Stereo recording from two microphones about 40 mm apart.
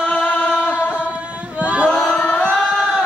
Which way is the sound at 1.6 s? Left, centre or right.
Right.